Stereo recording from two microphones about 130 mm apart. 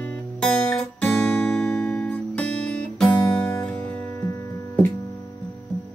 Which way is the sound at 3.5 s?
10° left (ahead or behind).